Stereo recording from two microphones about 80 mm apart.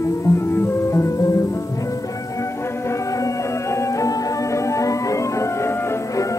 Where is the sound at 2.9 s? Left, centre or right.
Left.